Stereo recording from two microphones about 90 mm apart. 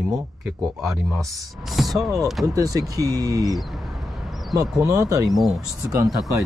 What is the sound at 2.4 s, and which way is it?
Speech, 40° right (ahead or behind).